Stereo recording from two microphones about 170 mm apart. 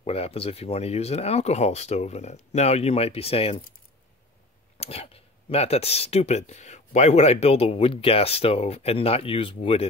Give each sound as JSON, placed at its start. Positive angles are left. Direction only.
{"t": 0.0, "sound": "speech", "side_deg": 35}
{"t": 4.7, "sound": "speech", "side_deg": 35}